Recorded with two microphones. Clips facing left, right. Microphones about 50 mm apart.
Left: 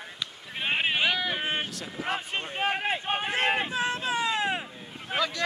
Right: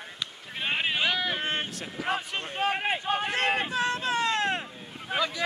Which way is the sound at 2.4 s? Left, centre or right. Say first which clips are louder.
Right 1 dB; centre.